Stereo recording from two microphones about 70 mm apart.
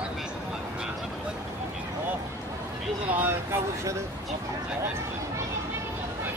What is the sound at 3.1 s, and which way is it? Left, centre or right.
Vehicle, right.